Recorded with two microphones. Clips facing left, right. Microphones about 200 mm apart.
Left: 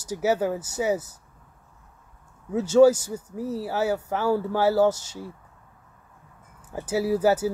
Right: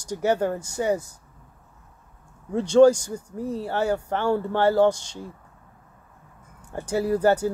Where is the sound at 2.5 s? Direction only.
5° left (ahead or behind).